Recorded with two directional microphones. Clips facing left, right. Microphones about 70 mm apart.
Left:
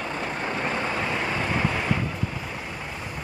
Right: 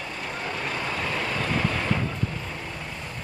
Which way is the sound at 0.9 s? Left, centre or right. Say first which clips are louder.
Left 2 dB; centre.